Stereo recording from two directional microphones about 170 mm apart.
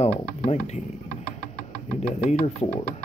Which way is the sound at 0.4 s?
40° left (ahead or behind).